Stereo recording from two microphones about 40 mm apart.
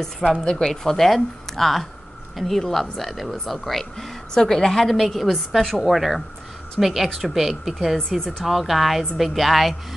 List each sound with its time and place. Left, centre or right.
0.4 s speech: centre
4.3 s speech: centre
4.8 s speech: centre